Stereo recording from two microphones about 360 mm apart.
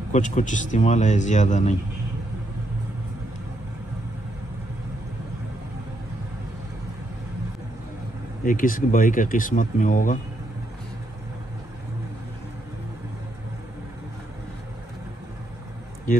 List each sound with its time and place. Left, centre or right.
0.1 s a man's voice: left
8.5 s a man's voice: left